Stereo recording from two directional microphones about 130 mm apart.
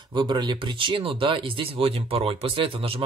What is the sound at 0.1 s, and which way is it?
Speech, 35° right (ahead or behind).